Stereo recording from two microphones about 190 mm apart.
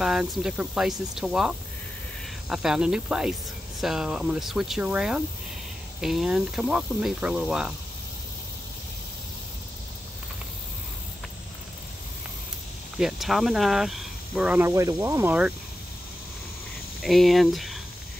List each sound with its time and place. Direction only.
0.0 s speech: centre (ahead or behind)
12.9 s speech: centre (ahead or behind)
17.0 s speech: centre (ahead or behind)